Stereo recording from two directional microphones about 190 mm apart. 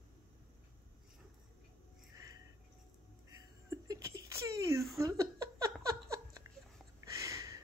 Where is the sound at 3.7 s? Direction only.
15° right (ahead or behind).